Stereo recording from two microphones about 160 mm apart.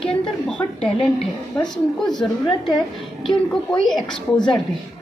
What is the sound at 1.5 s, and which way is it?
Speech, 5° left (ahead or behind).